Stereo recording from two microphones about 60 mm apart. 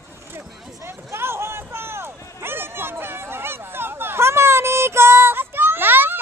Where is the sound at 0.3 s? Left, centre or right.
Right.